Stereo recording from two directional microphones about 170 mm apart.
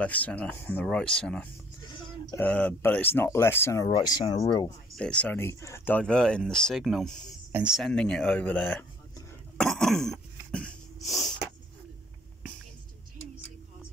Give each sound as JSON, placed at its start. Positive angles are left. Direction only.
{"t": 0.0, "sound": "speech", "side_deg": 10}
{"t": 1.8, "sound": "a sound", "side_deg": 25}
{"t": 2.3, "sound": "speech", "side_deg": 10}
{"t": 4.9, "sound": "speech", "side_deg": 5}
{"t": 9.6, "sound": "cough", "side_deg": 0}